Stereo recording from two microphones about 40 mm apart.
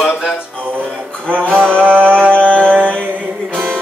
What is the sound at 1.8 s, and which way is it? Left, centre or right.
Music, right.